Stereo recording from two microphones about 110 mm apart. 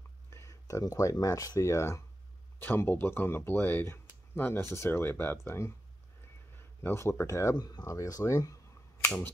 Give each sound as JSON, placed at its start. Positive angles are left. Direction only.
{"t": 0.3, "sound": "speech", "side_deg": 25}